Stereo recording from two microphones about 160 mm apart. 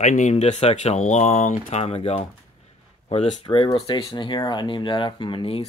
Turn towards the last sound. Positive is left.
turn(degrees=35)  # may be behind; listen again after turning